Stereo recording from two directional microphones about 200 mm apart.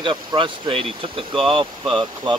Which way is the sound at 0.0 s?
25° right (ahead or behind).